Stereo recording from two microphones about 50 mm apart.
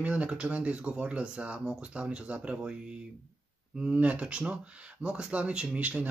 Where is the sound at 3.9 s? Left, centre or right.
Right.